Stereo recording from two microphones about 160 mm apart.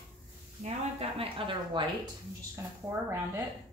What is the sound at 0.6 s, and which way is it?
A woman's voice, 40° right (ahead or behind).